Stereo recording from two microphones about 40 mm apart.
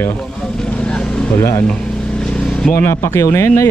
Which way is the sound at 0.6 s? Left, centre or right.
Left.